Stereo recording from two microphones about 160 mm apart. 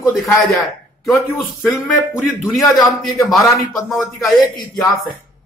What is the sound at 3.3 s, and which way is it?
Speech, centre (ahead or behind).